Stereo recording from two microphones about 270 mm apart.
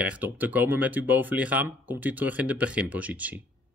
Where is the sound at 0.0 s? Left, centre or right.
Centre.